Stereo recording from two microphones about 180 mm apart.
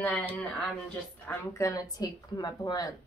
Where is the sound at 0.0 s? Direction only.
10° left (ahead or behind).